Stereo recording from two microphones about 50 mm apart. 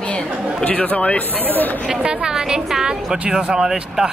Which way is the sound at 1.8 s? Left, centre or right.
Centre.